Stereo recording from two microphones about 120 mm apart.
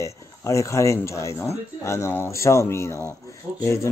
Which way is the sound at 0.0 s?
25° left (ahead or behind).